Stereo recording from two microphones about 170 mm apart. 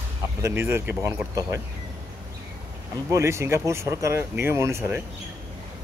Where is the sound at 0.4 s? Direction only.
15° right (ahead or behind).